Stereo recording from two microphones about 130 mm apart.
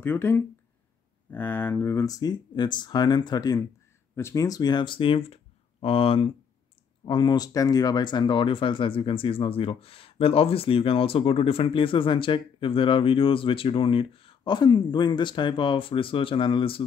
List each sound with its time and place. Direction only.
0.0 s speech: 15° left (ahead or behind); by 16.8 s 40° left (ahead or behind)